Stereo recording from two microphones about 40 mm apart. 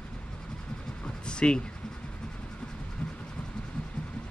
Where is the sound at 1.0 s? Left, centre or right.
Left.